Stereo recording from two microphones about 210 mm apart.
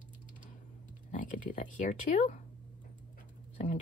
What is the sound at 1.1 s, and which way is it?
Speech, 40° left (ahead or behind).